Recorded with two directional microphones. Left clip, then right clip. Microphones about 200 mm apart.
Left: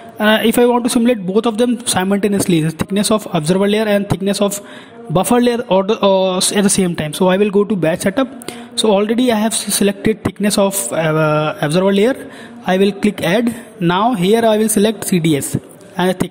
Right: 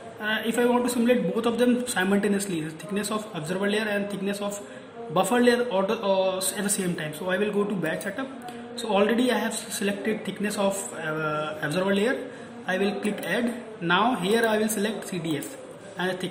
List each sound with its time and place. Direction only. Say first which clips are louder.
0.2 s a woman's voice: left 13 dB; 45° left (ahead or behind)